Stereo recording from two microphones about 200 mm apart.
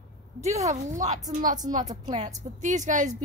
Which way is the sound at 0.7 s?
35° right (ahead or behind).